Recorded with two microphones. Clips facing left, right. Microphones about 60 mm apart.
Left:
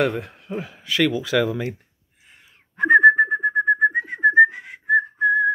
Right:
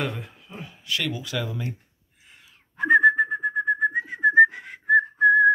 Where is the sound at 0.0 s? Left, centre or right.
Left.